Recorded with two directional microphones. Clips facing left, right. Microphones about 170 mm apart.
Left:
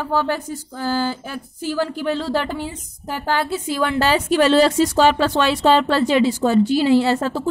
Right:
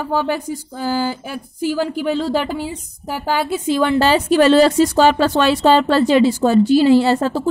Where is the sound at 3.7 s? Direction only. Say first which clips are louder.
Right 5 dB; 30° right (ahead or behind).